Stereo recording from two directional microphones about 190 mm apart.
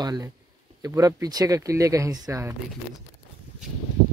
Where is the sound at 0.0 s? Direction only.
20° right (ahead or behind).